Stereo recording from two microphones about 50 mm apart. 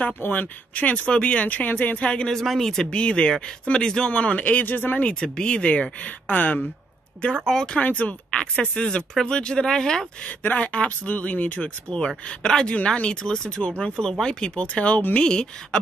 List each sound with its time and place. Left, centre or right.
0.2 s speech: left
2.0 s speech: centre
2.3 s speech: centre
4.1 s speech: left
5.0 s speech: centre; by 6.7 s left
7.4 s speech: centre
7.8 s speech: left; by 10.0 s centre
10.5 s speech: left
12.3 s speech: centre